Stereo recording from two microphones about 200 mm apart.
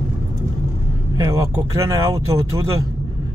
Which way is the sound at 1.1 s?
15° right (ahead or behind).